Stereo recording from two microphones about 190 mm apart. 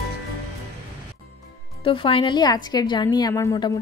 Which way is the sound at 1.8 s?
25° left (ahead or behind).